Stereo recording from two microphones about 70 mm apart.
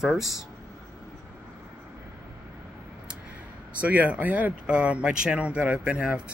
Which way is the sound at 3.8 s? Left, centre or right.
Right.